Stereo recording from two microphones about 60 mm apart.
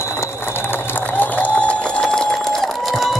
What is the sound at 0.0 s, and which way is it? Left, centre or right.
Ratchet, left.